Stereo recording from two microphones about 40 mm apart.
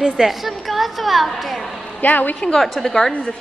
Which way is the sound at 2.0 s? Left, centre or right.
Left.